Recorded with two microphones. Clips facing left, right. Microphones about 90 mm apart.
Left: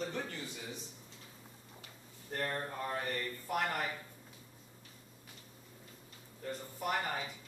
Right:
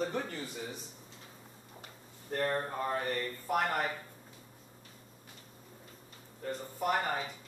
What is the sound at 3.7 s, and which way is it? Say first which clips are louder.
Speech: right 4 dB; 35° right (ahead or behind).